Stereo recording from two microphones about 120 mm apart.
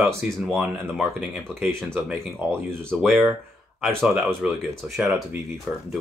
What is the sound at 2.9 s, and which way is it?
Speech, centre (ahead or behind).